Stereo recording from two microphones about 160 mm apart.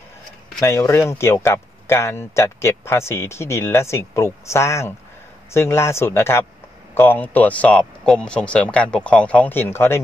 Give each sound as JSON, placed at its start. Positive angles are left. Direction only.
{"t": 0.6, "sound": "speech", "side_deg": 20}